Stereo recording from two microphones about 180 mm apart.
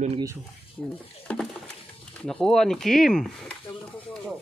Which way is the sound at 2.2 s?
5° left (ahead or behind).